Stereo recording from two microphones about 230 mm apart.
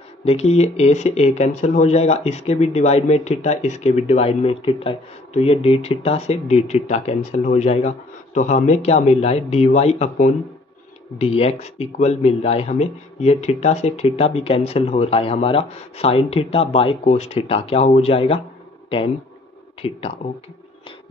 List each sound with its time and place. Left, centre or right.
0.2 s speech: left
19.8 s speech: left